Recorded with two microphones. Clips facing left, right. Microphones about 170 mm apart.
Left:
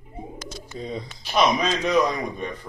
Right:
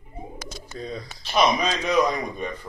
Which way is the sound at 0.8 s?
20° left (ahead or behind).